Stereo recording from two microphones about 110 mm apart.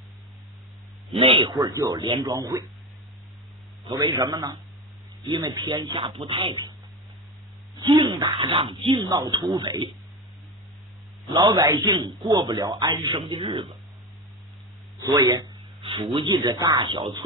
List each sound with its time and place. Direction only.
1.1 s speech: 50° right (ahead or behind)
1.8 s a woman's voice: 35° right (ahead or behind)
3.9 s a woman's voice: 40° right (ahead or behind)
7.7 s speech: 45° right (ahead or behind)
8.9 s a woman's voice: 35° right (ahead or behind)
11.2 s a woman's voice: 40° right (ahead or behind)
15.0 s a sound: 35° right (ahead or behind)
16.2 s a woman's voice: 40° right (ahead or behind)
16.7 s speech: 50° right (ahead or behind)